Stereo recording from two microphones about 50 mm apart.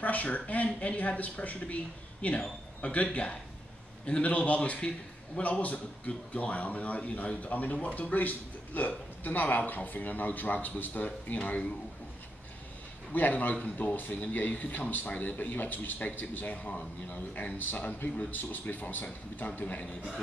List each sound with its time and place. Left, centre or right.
0.0 s a man's voice: left
13.1 s a man's voice: left